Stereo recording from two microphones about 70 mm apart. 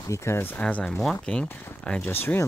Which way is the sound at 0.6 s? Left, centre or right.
Centre.